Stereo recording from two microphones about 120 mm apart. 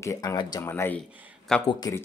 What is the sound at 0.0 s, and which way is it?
Speech, 25° left (ahead or behind).